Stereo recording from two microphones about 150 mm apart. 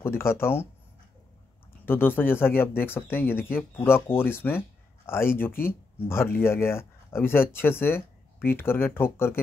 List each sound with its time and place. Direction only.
0.0 s speech: 15° left (ahead or behind)
1.7 s speech: 15° left (ahead or behind)